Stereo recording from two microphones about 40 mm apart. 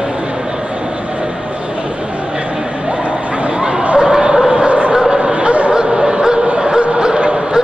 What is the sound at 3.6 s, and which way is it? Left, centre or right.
Dog, centre.